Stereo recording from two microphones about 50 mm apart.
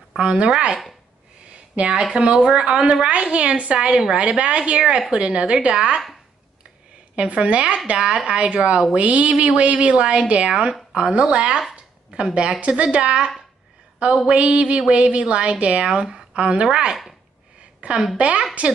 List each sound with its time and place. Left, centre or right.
0.2 s a woman's voice: centre
1.5 s a sound: right
2.1 s a woman's voice: centre
7.2 s a woman's voice: right
11.7 s a sound: centre
12.4 s a woman's voice: right
14.3 s a woman's voice: right
18.1 s a woman's voice: right